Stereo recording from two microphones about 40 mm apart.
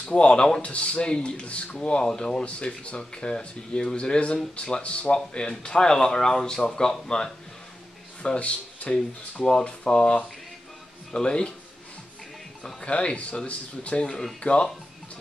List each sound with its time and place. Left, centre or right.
0.0 s speech: left
4.8 s speech: left
5.1 s speech: left
8.2 s speech: left
8.9 s speech: centre
12.8 s speech: left